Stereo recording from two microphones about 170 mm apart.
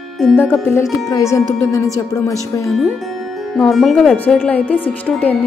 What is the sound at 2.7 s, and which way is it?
Speech, centre (ahead or behind).